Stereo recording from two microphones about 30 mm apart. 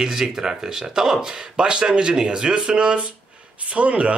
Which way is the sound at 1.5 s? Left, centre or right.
Right.